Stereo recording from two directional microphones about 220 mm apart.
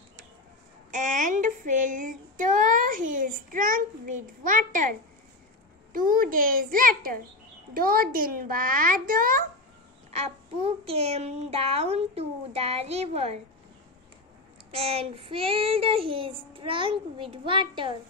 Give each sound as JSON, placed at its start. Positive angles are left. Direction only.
{"t": 0.9, "sound": "child singing", "side_deg": -35}
{"t": 5.9, "sound": "child singing", "side_deg": -40}
{"t": 10.1, "sound": "a child's voice", "side_deg": -25}
{"t": 14.7, "sound": "a child's voice", "side_deg": -25}